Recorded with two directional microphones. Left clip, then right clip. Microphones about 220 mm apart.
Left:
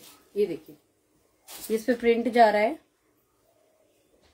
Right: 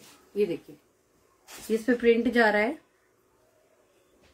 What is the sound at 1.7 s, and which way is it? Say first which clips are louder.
A woman's voice: right 1 dB; 10° right (ahead or behind).